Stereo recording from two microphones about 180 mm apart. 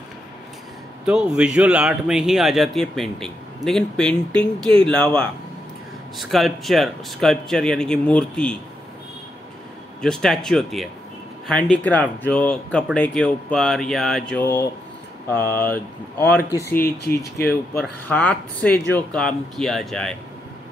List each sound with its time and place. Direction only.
1.0 s a man's voice: 5° right (ahead or behind)
10.0 s a man's voice: 5° left (ahead or behind)
14.3 s speech: 10° left (ahead or behind)
16.8 s speech: 60° left (ahead or behind)
17.7 s a man's voice: 10° left (ahead or behind)